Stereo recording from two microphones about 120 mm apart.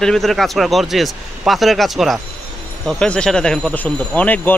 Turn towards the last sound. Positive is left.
turn(degrees=15)  # may be behind; listen again after turning